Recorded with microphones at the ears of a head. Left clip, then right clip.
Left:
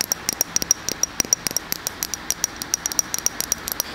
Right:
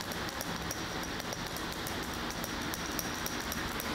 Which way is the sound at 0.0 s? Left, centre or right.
Left.